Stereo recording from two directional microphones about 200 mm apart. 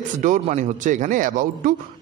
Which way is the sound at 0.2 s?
40° right (ahead or behind).